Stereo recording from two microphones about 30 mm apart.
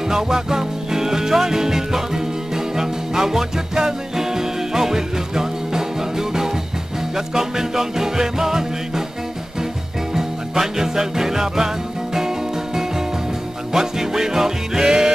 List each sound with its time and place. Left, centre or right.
0.1 s music: centre
10.1 s music: centre